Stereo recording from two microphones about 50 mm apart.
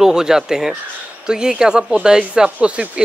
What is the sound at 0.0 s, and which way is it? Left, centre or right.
Speech, centre.